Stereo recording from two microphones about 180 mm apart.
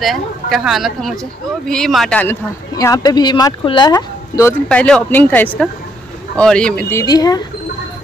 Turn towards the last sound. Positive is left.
turn(degrees=20)  # may be behind; listen again after turning